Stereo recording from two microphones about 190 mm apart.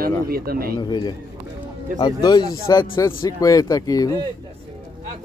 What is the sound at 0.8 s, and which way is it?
Speech, 25° left (ahead or behind).